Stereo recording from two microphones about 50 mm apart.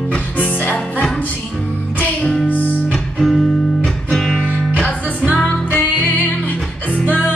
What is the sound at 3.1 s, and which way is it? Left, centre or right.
Music, centre.